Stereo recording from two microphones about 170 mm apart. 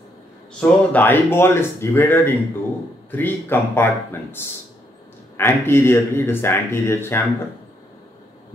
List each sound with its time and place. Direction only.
0.6 s speech: 10° left (ahead or behind)